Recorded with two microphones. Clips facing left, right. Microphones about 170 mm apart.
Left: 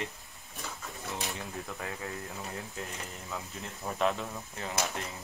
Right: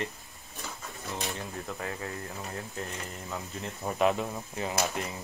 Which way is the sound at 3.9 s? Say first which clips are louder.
Right 4 dB; 10° right (ahead or behind).